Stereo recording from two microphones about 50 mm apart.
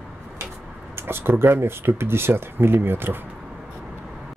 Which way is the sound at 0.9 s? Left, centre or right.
Right.